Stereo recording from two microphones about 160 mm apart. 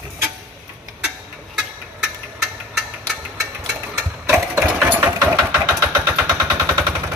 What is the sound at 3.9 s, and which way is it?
Engine, 5° right (ahead or behind).